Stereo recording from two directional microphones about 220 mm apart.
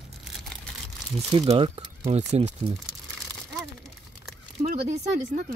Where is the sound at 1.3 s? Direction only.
25° right (ahead or behind).